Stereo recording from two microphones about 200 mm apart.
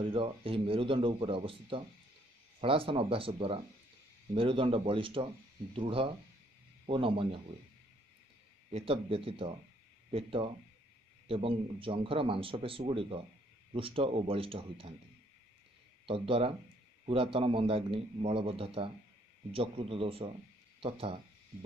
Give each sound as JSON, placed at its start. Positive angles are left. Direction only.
{"t": 0.0, "sound": "a man's voice", "side_deg": -25}
{"t": 8.7, "sound": "a man's voice", "side_deg": -30}
{"t": 16.1, "sound": "a man's voice", "side_deg": -25}